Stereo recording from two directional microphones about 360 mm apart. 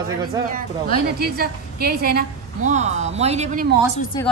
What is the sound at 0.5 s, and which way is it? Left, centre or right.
A woman's voice, right.